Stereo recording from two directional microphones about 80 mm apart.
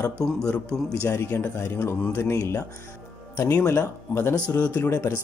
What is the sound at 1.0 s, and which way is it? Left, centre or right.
Speech, left.